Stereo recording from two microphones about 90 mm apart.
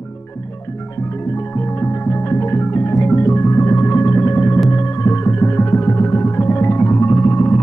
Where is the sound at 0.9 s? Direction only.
30° left (ahead or behind).